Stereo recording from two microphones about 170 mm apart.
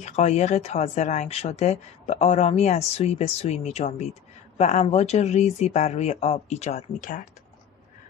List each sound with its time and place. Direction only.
0.0 s speech: 40° left (ahead or behind)